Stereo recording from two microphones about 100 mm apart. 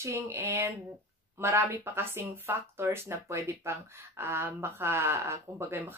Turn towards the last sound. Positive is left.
turn(degrees=-25)  # may be behind; listen again after turning